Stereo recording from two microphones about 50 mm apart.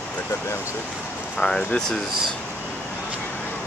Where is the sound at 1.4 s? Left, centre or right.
Centre.